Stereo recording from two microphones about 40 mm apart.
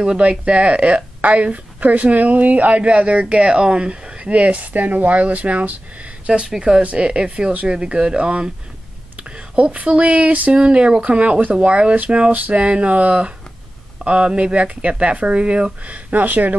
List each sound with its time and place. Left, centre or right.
0.2 s speech: right
4.3 s speech: right; by 6.8 s centre
6.8 s speech: right
9.3 s a sound: right
9.8 s speech: right
10.5 s speech: right
12.3 s a sound: right
12.5 s speech: right